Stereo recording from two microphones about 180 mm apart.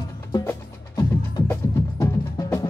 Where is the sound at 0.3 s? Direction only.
25° left (ahead or behind).